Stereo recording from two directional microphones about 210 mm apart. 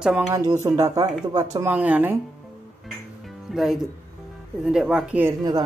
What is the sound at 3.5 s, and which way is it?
Speech, centre (ahead or behind).